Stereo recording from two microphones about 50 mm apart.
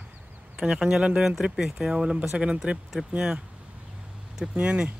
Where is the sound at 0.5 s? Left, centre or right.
Centre.